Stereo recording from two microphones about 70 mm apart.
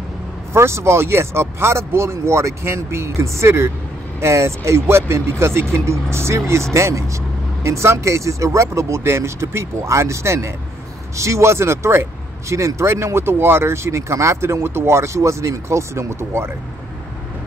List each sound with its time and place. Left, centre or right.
0.5 s speech: right